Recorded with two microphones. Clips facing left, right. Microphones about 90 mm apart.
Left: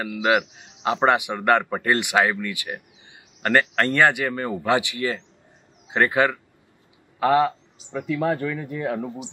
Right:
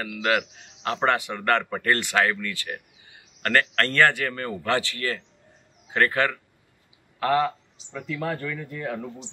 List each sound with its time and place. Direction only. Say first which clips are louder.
0.0 s speech: left 4 dB; 15° left (ahead or behind)